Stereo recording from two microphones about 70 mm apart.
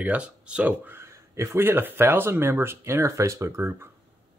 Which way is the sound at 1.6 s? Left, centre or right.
Right.